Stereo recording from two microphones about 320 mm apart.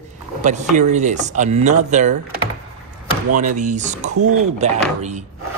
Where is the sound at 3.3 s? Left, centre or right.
Right.